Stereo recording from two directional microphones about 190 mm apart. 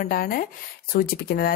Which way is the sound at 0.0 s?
50° left (ahead or behind).